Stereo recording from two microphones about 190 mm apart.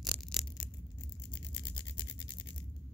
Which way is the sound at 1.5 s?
25° left (ahead or behind).